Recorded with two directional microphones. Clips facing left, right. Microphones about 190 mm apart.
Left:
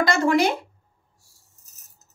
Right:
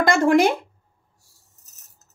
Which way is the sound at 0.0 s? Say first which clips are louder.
Right 3 dB; 50° right (ahead or behind).